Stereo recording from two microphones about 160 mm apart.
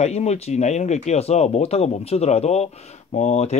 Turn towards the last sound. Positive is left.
turn(degrees=45)  # may be behind; listen again after turning